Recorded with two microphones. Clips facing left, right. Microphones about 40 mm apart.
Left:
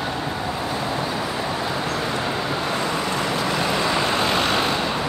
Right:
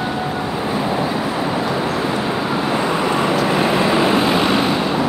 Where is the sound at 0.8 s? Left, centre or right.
Centre.